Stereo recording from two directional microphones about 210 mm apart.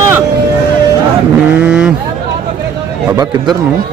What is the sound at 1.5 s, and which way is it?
Speech, 5° right (ahead or behind).